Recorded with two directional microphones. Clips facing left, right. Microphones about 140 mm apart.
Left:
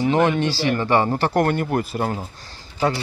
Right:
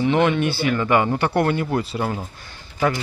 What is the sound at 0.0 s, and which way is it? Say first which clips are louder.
Speech: even; 35° left (ahead or behind).